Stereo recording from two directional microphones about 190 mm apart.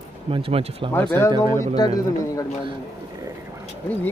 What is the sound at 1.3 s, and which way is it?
Speech, 20° right (ahead or behind).